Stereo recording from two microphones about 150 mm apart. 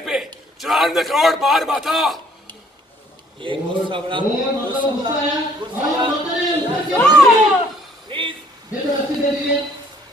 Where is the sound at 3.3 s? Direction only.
35° right (ahead or behind).